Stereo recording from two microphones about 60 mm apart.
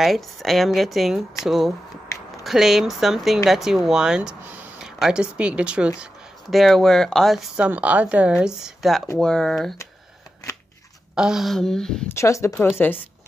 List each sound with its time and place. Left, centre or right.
0.0 s speech: centre
6.5 s speech: centre
7.7 s a woman's voice: right
8.3 s speech: centre
9.2 s speech: centre
11.1 s speech: centre
11.5 s speech: centre
12.1 s speech: left
12.6 s speech: left